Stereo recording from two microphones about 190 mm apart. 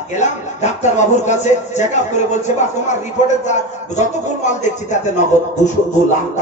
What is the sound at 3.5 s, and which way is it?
A man's voice, 40° left (ahead or behind).